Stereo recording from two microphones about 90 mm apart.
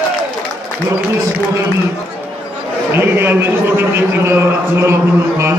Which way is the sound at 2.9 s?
25° right (ahead or behind).